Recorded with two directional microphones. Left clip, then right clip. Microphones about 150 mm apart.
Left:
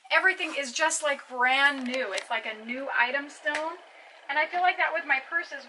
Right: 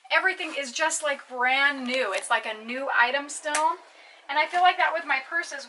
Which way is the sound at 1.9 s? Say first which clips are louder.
Right 5 dB; 15° right (ahead or behind).